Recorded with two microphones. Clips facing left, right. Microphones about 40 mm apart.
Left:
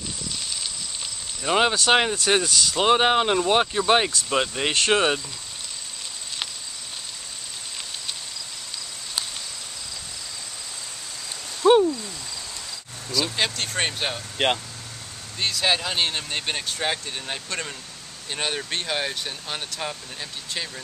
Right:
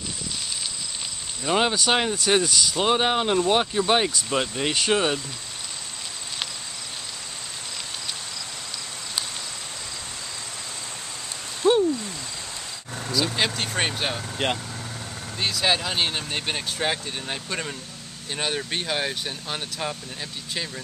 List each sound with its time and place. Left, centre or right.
1.4 s speech: centre
11.6 s a sound: left
13.1 s speech: centre